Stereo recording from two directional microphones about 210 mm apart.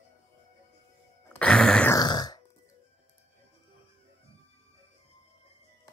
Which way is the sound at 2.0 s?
20° left (ahead or behind).